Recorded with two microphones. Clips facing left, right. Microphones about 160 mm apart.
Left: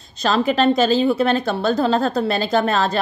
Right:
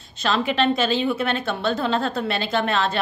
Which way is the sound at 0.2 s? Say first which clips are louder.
Left 4 dB; 40° left (ahead or behind).